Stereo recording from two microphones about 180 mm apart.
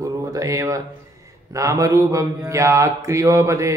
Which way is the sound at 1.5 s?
15° right (ahead or behind).